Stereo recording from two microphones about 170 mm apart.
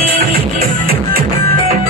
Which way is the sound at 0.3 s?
60° right (ahead or behind).